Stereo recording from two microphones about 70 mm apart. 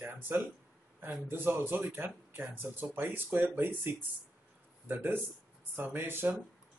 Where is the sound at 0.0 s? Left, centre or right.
Right.